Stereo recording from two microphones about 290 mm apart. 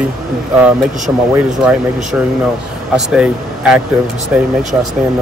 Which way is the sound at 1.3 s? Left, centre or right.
Centre.